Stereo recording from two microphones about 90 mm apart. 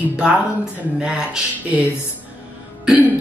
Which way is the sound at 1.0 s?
10° right (ahead or behind).